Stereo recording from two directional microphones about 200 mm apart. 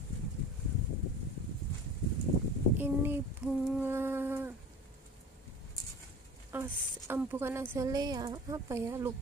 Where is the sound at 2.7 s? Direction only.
10° right (ahead or behind).